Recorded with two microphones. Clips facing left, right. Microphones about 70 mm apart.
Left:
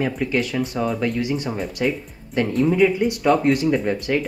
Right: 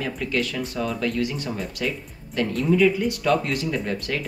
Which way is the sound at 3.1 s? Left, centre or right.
Left.